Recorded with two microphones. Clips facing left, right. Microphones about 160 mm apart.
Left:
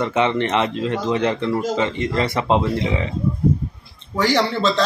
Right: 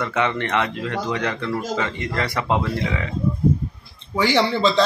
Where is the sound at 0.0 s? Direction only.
20° left (ahead or behind).